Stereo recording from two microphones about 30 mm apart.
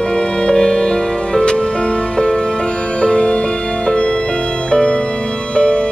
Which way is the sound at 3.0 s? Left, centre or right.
Left.